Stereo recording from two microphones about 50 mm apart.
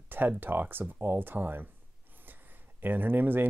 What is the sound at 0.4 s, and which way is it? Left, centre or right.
Speech, right.